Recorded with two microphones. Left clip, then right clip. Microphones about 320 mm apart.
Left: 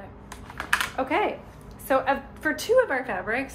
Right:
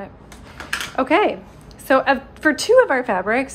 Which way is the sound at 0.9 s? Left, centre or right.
Right.